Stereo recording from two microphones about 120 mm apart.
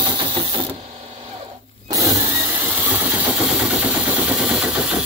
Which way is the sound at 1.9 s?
25° right (ahead or behind).